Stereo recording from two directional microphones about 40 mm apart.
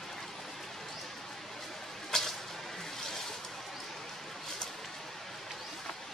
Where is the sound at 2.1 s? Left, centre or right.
Centre.